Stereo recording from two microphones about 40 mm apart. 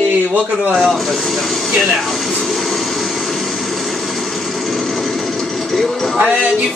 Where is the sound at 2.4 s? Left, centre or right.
Centre.